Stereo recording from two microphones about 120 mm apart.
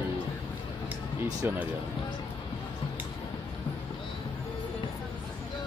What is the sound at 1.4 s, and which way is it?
Speech, 15° right (ahead or behind).